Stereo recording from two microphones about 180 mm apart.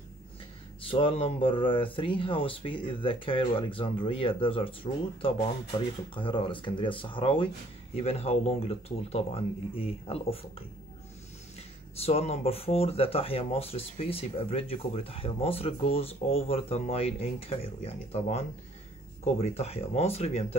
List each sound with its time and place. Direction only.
0.8 s speech: 30° left (ahead or behind)
6.1 s speech: 25° left (ahead or behind)
12.0 s speech: 35° left (ahead or behind)